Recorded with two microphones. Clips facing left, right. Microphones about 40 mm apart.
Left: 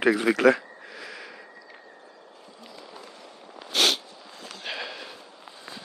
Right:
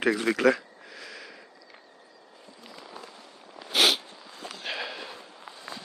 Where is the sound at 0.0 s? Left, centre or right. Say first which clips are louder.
Left 3 dB; centre.